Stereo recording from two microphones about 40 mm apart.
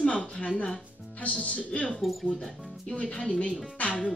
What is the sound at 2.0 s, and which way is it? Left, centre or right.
Speech, centre.